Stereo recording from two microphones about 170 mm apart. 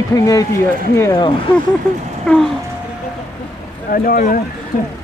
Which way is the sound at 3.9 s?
60° left (ahead or behind).